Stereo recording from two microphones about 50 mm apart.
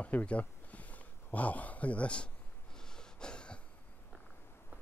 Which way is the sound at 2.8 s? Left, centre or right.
Centre.